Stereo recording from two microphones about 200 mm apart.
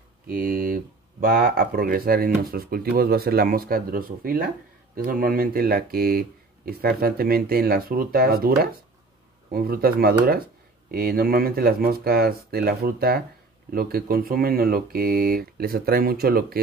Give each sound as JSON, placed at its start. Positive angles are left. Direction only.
{"t": 0.3, "sound": "speech", "side_deg": -45}